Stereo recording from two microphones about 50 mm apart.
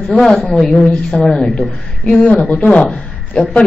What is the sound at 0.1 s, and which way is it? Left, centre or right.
Speech, centre.